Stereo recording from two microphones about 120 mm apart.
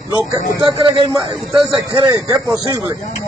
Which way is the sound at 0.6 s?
40° right (ahead or behind).